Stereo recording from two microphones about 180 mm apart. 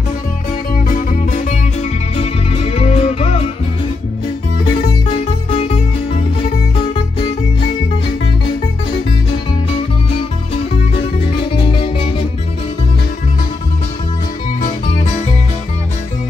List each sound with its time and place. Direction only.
0.7 s music: 50° left (ahead or behind)
5.0 s music: 35° left (ahead or behind)
10.5 s music: 30° left (ahead or behind)